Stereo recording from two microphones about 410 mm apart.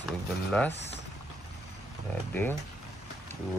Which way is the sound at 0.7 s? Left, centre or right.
Centre.